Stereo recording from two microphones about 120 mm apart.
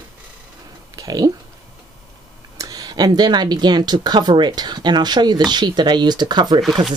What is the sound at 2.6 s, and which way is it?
Speech, 30° right (ahead or behind).